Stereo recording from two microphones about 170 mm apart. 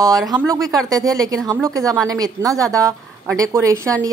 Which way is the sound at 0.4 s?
20° right (ahead or behind).